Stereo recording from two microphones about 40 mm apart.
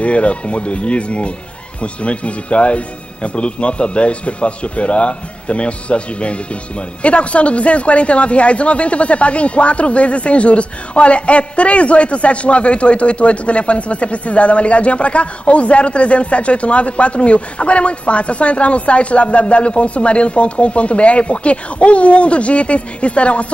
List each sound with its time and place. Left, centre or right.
0.0 s a man's voice: left